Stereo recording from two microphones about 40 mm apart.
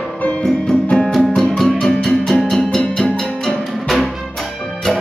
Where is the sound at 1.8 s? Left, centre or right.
Centre.